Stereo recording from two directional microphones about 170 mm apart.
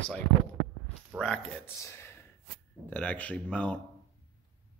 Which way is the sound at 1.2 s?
5° left (ahead or behind).